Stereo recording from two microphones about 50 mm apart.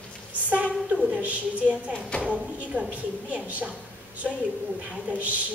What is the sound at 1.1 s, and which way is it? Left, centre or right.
A woman's voice, right.